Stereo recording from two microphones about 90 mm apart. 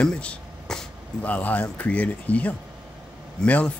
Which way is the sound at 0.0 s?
10° left (ahead or behind).